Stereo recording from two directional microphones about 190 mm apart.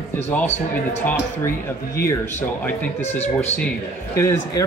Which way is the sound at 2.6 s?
10° left (ahead or behind).